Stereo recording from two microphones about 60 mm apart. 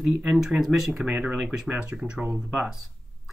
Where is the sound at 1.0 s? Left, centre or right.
Centre.